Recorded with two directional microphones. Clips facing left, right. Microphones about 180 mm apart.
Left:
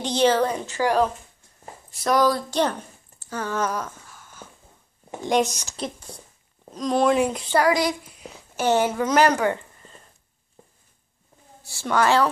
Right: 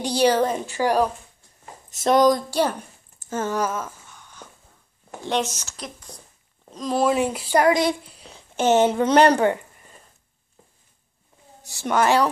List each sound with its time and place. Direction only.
0.0 s a woman's voice: 10° right (ahead or behind)
3.3 s speech: 20° right (ahead or behind)
3.6 s a sound: 5° right (ahead or behind)
5.1 s speech: 15° left (ahead or behind)
5.8 s speech: 30° left (ahead or behind)
6.7 s speech: centre (ahead or behind)
7.5 s a child's voice: 25° right (ahead or behind)
9.5 s a sound: 15° right (ahead or behind)
11.6 s a woman's voice: 15° right (ahead or behind)